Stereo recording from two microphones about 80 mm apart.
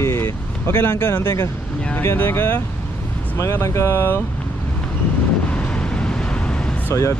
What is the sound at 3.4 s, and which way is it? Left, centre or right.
Speech, left.